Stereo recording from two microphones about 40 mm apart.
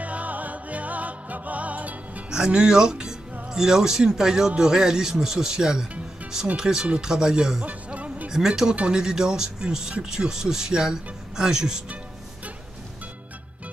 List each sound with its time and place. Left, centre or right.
0.0 s music: right
2.3 s speech: centre
7.6 s music: right
8.3 s speech: centre